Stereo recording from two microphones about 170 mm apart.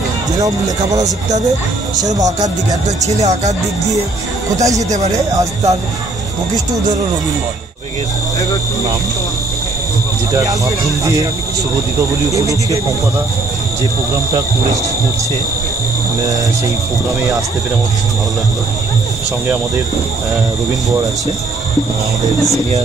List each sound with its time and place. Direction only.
2.0 s speech: 20° right (ahead or behind)
3.0 s speech: 40° right (ahead or behind)
4.5 s speech: 20° right (ahead or behind)
10.3 s speech: 20° right (ahead or behind)
12.3 s speech: 20° right (ahead or behind)